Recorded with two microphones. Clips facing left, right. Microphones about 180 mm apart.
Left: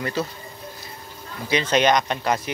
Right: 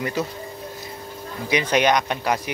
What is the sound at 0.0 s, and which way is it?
Speech, 15° right (ahead or behind).